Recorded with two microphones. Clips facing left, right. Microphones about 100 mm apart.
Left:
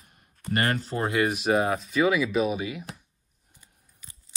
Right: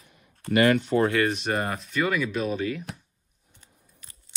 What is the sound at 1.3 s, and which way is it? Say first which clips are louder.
Speech: left 4 dB; 5° left (ahead or behind).